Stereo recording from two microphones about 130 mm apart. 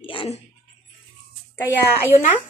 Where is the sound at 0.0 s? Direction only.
40° left (ahead or behind).